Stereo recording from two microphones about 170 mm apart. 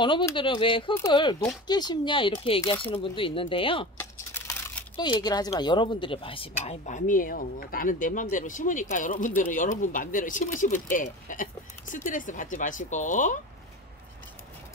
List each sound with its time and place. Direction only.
0.4 s a woman's voice: 30° left (ahead or behind)
4.3 s computer keyboard: 10° left (ahead or behind)
4.9 s a woman's voice: 25° left (ahead or behind)
7.1 s speech: 55° left (ahead or behind)